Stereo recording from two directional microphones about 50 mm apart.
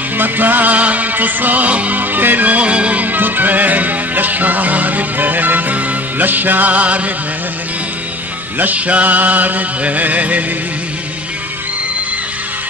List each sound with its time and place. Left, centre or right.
0.2 s music: right
8.5 s music: right